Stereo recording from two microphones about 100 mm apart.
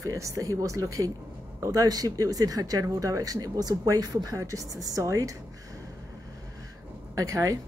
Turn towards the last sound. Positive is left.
turn(degrees=-35)  # may be behind; listen again after turning